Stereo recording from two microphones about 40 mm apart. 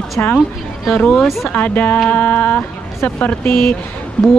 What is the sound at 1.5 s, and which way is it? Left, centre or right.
Speech, left.